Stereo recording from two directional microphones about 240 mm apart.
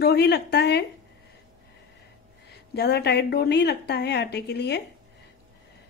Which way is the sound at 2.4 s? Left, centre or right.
Left.